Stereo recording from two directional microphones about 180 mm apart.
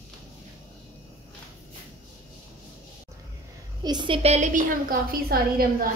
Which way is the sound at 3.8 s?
25° right (ahead or behind).